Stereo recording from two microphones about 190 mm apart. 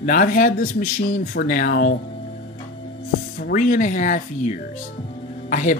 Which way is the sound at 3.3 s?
50° left (ahead or behind).